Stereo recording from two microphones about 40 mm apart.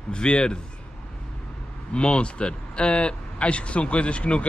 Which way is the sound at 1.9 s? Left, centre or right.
Left.